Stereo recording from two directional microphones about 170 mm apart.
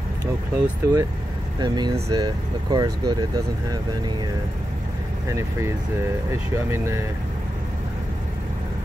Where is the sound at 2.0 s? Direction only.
25° right (ahead or behind).